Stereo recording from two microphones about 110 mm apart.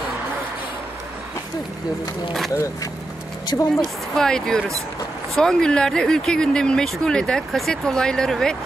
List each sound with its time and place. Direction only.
2.5 s speech: 30° left (ahead or behind)
4.1 s speech: 5° left (ahead or behind)